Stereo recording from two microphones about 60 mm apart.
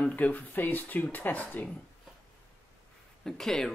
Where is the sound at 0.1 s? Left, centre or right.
Left.